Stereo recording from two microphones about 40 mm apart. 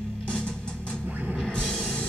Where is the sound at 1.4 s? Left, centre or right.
Left.